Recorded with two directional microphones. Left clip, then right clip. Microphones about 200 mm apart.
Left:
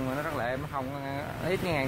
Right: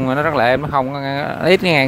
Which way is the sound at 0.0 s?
40° right (ahead or behind).